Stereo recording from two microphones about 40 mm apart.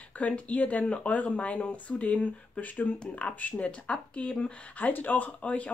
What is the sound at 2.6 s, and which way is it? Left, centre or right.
Speech, left.